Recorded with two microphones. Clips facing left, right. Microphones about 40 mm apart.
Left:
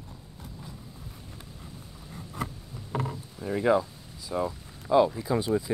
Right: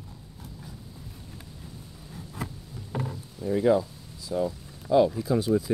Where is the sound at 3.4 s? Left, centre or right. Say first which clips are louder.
Right 2 dB; left.